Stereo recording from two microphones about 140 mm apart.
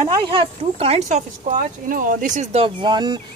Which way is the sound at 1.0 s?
65° right (ahead or behind).